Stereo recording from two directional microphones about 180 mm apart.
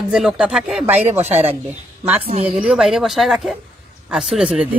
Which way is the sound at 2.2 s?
35° right (ahead or behind).